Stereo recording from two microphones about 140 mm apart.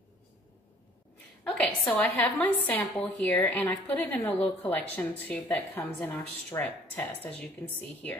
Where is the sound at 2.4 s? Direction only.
10° left (ahead or behind).